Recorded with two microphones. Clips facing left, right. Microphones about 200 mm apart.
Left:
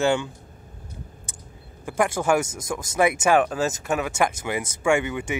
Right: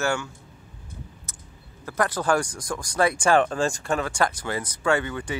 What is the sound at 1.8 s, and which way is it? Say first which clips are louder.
Speech: left 2 dB; 15° left (ahead or behind).